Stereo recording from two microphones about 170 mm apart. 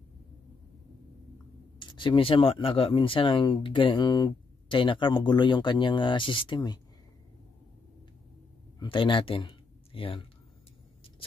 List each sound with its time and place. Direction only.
1.8 s speech: 30° left (ahead or behind)
8.7 s speech: 30° left (ahead or behind)